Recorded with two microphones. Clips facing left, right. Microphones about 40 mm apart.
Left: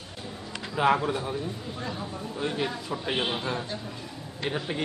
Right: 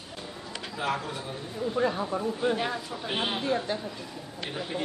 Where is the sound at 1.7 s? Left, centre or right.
Right.